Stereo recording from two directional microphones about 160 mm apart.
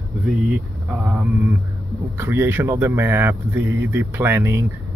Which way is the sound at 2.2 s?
15° right (ahead or behind).